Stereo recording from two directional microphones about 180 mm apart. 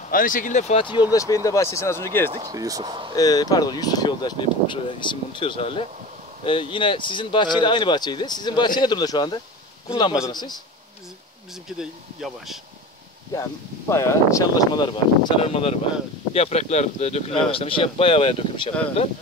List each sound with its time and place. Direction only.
0.1 s speech: 50° left (ahead or behind); by 1.0 s 30° left (ahead or behind)
1.1 s speech: 20° left (ahead or behind)
2.3 s speech: 20° right (ahead or behind)
3.2 s speech: 20° left (ahead or behind)
11.8 s speech: centre (ahead or behind)
13.3 s speech: 15° left (ahead or behind)